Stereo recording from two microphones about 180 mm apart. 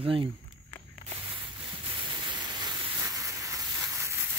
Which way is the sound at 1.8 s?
25° right (ahead or behind).